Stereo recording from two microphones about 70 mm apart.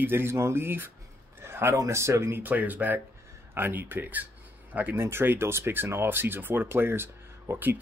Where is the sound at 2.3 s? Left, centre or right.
Right.